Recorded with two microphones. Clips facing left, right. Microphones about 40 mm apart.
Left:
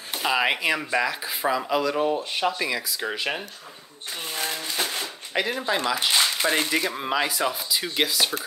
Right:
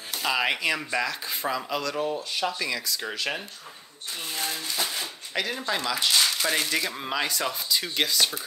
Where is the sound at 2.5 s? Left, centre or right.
Centre.